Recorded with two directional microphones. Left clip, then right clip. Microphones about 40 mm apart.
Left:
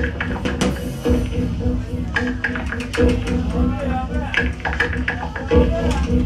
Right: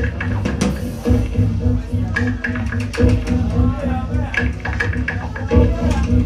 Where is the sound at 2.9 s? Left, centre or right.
Left.